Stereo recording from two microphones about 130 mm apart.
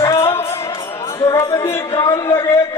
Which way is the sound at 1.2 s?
20° left (ahead or behind).